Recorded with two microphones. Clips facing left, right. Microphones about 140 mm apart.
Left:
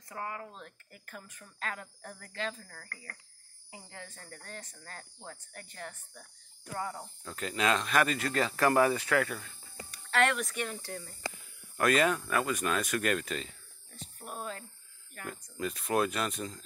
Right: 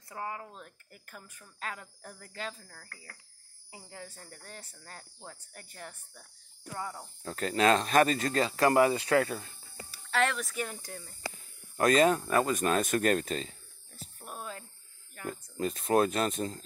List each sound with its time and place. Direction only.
0.1 s speech: 15° right (ahead or behind)
7.2 s speech: 40° right (ahead or behind)
8.5 s speech: 20° right (ahead or behind)
10.1 s speech: centre (ahead or behind)
10.7 s speech: 15° right (ahead or behind)
11.7 s speech: 30° right (ahead or behind)
13.9 s dog: 5° right (ahead or behind)
15.2 s speech: 35° right (ahead or behind)